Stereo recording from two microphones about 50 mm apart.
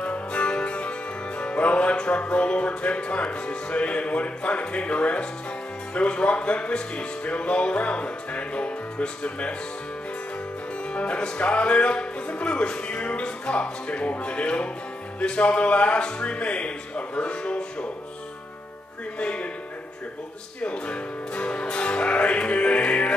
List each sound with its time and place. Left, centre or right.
0.0 s music: left
10.9 s music: left
19.1 s music: left
20.6 s music: left